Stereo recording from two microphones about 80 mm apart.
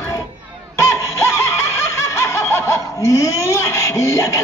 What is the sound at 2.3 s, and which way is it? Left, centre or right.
Snicker, left.